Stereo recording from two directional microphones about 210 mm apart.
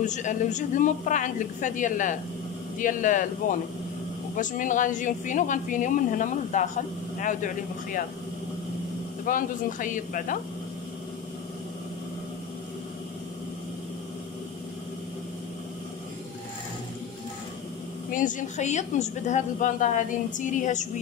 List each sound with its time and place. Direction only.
0.0 s a woman's voice: 35° left (ahead or behind)
4.4 s a woman's voice: 40° left (ahead or behind)
9.2 s a woman's voice: 40° left (ahead or behind)
18.1 s a woman's voice: 40° left (ahead or behind)